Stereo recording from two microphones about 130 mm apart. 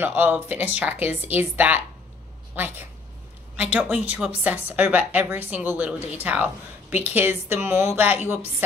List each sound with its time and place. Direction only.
0.0 s a woman's voice: 15° right (ahead or behind)